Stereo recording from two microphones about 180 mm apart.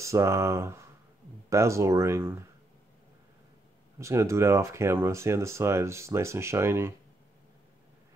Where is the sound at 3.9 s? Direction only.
15° right (ahead or behind).